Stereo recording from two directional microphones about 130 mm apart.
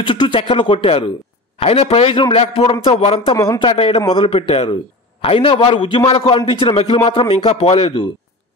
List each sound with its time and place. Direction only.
0.0 s a man's voice: 40° left (ahead or behind)